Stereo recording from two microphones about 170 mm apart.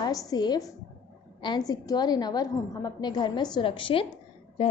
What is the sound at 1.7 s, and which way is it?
A woman's voice, 25° left (ahead or behind).